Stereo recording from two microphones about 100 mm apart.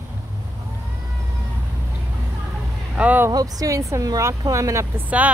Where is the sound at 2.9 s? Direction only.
15° right (ahead or behind).